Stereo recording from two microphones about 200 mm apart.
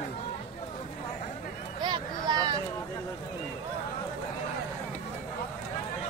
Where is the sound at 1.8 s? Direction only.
20° right (ahead or behind).